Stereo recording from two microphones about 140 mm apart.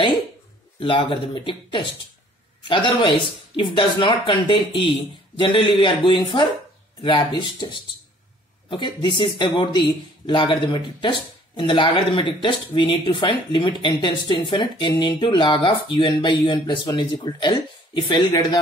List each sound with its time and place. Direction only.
0.7 s speech: 35° left (ahead or behind)